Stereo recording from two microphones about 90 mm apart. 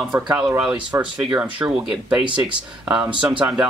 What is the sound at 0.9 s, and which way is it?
Speech, 35° right (ahead or behind).